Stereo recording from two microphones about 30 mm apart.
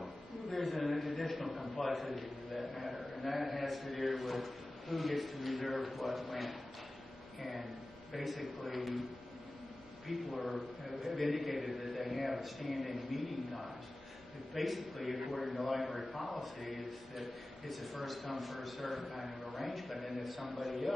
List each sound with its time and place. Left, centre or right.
0.0 s a sound: centre
1.3 s a man's voice: centre
8.2 s a man's voice: centre
11.0 s a man's voice: centre
14.5 s a man's voice: centre